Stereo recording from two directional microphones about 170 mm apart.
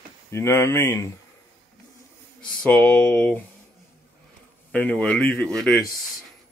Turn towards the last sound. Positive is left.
turn(degrees=5)  # may be behind; listen again after turning